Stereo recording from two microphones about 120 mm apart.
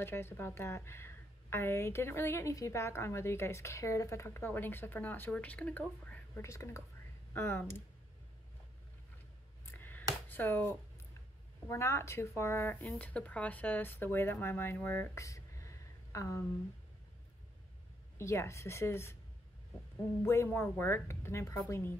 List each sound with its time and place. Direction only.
0.0 s a woman's voice: 20° left (ahead or behind)
9.7 s a sound: 15° left (ahead or behind)
10.2 s a woman's voice: 15° left (ahead or behind)
18.1 s a woman's voice: 20° left (ahead or behind)
20.2 s a woman's voice: 20° left (ahead or behind)